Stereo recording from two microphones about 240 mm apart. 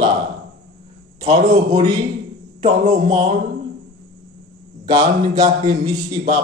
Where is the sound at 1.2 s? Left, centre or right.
Right.